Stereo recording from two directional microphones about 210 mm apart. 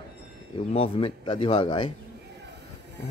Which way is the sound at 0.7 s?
25° left (ahead or behind).